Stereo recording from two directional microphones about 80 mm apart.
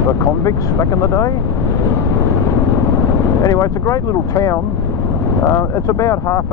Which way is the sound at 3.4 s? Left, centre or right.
Left.